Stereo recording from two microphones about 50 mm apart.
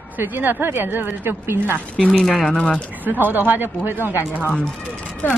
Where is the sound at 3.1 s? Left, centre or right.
Right.